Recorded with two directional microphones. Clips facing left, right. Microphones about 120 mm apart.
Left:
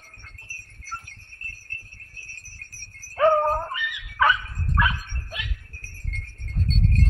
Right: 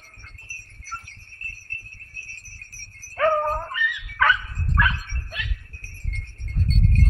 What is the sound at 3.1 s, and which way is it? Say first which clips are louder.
Dog: left 2 dB; 20° left (ahead or behind).